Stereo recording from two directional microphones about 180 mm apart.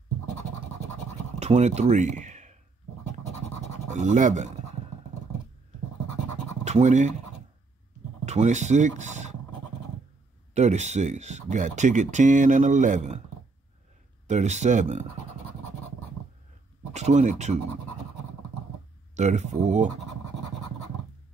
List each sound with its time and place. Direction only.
1.4 s speech: 40° right (ahead or behind)
3.9 s speech: 45° right (ahead or behind)
6.6 s speech: 40° right (ahead or behind)
8.3 s speech: 40° right (ahead or behind)
10.5 s speech: 40° right (ahead or behind)
14.2 s speech: 40° right (ahead or behind)
16.9 s speech: 40° right (ahead or behind)
19.1 s speech: 40° right (ahead or behind)